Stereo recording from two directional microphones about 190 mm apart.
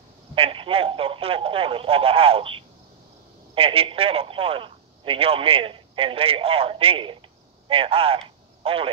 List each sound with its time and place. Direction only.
0.3 s speech: 30° right (ahead or behind)